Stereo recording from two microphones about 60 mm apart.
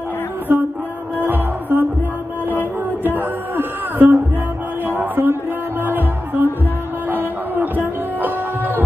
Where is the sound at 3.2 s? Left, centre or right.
Right.